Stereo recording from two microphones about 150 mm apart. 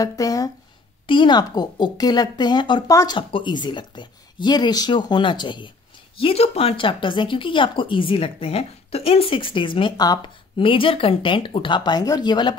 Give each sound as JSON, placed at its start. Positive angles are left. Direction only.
{"t": 0.0, "sound": "a woman's voice", "side_deg": 25}